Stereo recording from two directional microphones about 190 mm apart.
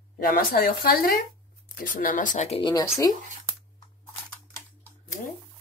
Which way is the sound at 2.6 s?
20° left (ahead or behind).